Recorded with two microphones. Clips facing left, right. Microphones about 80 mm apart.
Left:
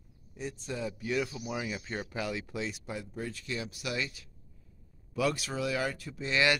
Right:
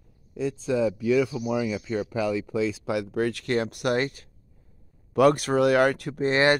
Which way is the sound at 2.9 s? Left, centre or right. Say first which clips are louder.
Right 13 dB; right.